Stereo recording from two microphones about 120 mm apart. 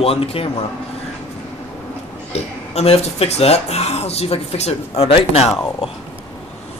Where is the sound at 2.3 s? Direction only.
60° left (ahead or behind).